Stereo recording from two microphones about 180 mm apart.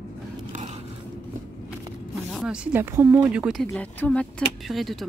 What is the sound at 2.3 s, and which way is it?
A woman's voice, 5° right (ahead or behind).